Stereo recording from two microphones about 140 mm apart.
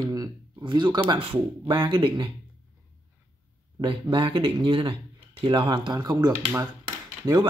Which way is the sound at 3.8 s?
40° right (ahead or behind).